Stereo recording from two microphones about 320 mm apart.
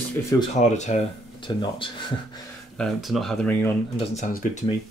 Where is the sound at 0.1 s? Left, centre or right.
Centre.